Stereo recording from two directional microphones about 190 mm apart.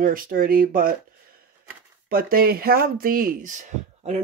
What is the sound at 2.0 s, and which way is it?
Speech, 50° right (ahead or behind).